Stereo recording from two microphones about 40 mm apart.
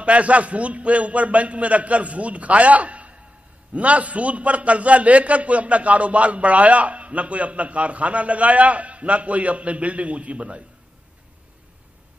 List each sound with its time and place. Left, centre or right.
0.0 s a man's voice: right